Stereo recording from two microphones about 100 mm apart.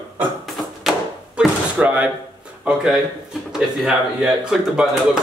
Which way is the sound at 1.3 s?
15° right (ahead or behind).